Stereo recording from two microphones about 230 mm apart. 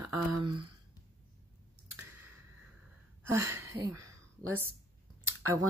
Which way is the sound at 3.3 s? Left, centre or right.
Centre.